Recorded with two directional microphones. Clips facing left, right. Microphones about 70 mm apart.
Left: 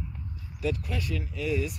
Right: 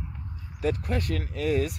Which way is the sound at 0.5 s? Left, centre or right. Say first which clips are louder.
Right 3 dB; right.